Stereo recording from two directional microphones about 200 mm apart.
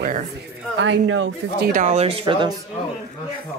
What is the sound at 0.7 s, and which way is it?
Speech, 70° right (ahead or behind).